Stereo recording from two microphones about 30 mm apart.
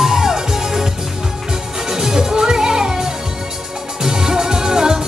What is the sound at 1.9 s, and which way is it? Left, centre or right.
Music, centre.